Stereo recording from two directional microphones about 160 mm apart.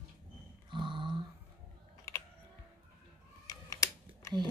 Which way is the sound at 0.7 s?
30° right (ahead or behind).